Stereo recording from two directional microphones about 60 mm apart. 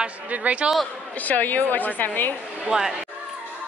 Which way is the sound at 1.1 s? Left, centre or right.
Left.